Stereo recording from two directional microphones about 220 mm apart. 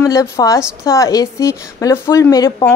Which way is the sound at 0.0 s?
15° left (ahead or behind).